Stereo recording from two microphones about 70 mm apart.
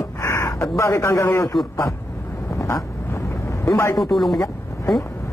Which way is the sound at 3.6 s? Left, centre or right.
Left.